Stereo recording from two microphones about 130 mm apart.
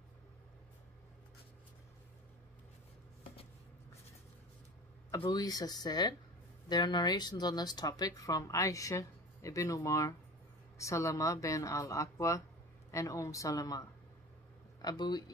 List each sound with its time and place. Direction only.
5.3 s speech: 30° left (ahead or behind)